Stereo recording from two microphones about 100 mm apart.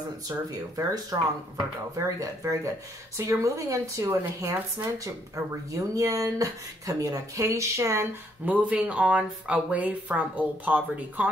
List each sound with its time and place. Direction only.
0.3 s speech: 30° right (ahead or behind)
8.5 s speech: 15° right (ahead or behind)